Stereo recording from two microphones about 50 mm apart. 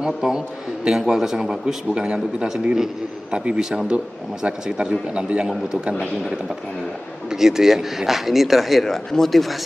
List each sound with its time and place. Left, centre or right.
0.0 s a man's voice: centre